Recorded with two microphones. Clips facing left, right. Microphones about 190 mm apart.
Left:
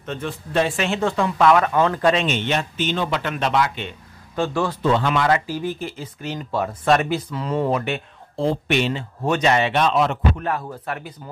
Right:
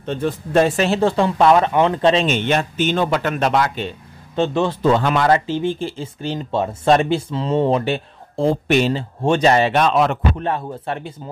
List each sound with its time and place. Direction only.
0.0 s speech: 35° right (ahead or behind)
2.2 s speech: 50° right (ahead or behind)
4.4 s speech: 25° right (ahead or behind)
4.8 s speech: 45° right (ahead or behind)
5.5 s speech: 25° right (ahead or behind)
8.4 s speech: 45° right (ahead or behind)
9.8 s speech: 60° right (ahead or behind)
10.3 s speech: 25° right (ahead or behind)